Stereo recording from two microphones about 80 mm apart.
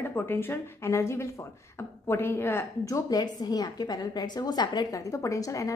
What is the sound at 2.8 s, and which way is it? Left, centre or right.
Speech, left.